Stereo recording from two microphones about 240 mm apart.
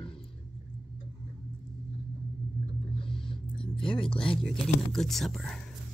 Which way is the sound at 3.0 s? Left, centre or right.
Left.